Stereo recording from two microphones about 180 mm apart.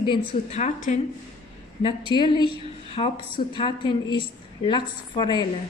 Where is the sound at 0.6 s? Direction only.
40° left (ahead or behind).